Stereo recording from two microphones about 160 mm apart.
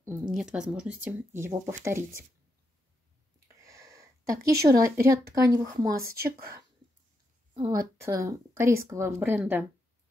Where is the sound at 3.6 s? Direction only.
20° right (ahead or behind).